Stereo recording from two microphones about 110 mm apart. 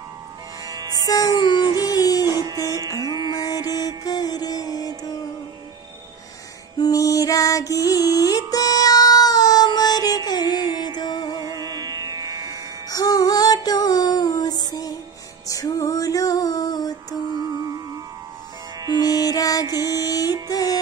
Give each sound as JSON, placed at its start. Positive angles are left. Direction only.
{"t": 0.7, "sound": "music", "side_deg": -35}
{"t": 1.0, "sound": "music", "side_deg": 35}
{"t": 2.2, "sound": "music", "side_deg": -25}
{"t": 2.5, "sound": "music", "side_deg": 30}
{"t": 3.0, "sound": "music", "side_deg": -35}
{"t": 3.3, "sound": "music", "side_deg": 35}
{"t": 6.8, "sound": "music", "side_deg": 30}
{"t": 11.3, "sound": "music", "side_deg": -35}
{"t": 12.9, "sound": "female singing", "side_deg": 35}
{"t": 15.4, "sound": "music", "side_deg": 30}
{"t": 18.9, "sound": "music", "side_deg": 35}